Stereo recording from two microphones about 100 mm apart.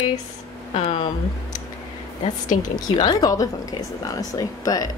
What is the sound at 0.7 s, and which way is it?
Speech, 90° left.